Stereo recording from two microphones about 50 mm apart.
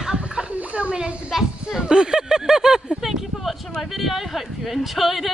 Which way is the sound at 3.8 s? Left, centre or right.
Centre.